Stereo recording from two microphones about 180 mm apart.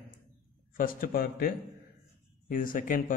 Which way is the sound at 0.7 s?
50° left (ahead or behind).